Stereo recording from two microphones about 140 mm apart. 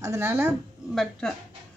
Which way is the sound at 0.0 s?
20° right (ahead or behind).